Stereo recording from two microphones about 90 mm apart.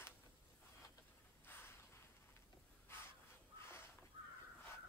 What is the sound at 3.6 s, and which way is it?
Crow, 25° left (ahead or behind).